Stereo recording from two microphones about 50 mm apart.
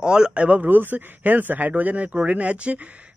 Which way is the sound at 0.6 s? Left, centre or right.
Right.